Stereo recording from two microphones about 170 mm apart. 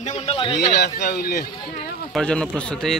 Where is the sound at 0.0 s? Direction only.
40° left (ahead or behind).